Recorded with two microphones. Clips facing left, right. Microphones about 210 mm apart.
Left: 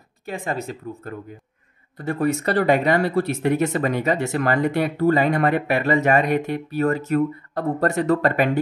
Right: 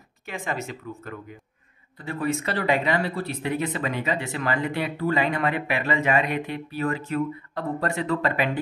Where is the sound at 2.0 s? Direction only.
45° left (ahead or behind).